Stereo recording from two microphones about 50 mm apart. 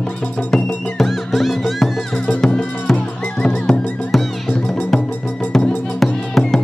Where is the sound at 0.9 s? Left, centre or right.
Centre.